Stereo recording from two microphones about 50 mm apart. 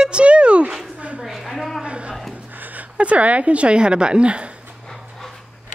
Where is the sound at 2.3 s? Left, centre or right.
Right.